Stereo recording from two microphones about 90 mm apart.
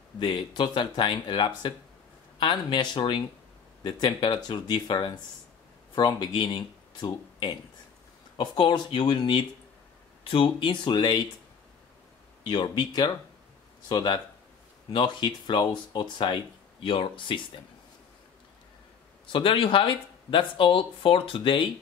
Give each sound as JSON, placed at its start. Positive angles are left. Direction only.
{"t": 0.2, "sound": "speech", "side_deg": 60}
{"t": 5.9, "sound": "speech", "side_deg": 50}
{"t": 10.2, "sound": "speech", "side_deg": 75}
{"t": 12.4, "sound": "speech", "side_deg": 55}
{"t": 16.8, "sound": "speech", "side_deg": 75}
{"t": 19.3, "sound": "speech", "side_deg": 80}